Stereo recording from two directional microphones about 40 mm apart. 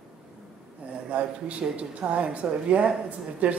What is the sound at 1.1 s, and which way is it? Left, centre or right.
Speech, right.